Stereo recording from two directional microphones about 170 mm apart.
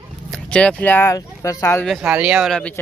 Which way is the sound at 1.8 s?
5° right (ahead or behind).